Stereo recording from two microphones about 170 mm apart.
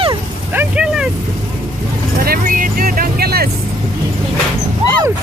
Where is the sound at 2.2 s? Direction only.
60° right (ahead or behind).